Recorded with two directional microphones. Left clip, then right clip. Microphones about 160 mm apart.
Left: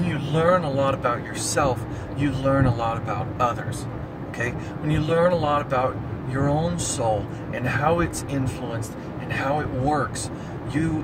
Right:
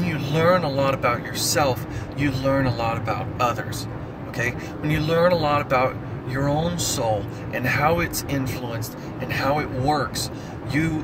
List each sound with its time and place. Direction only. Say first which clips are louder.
0.0 s speech: right 1 dB; 15° left (ahead or behind)